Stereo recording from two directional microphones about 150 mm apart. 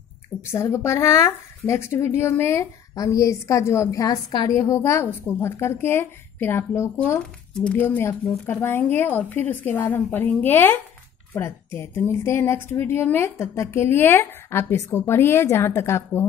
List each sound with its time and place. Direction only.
0.4 s a woman's voice: 15° left (ahead or behind)